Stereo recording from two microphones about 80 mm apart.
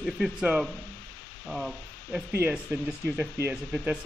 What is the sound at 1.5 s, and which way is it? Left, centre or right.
Hum, centre.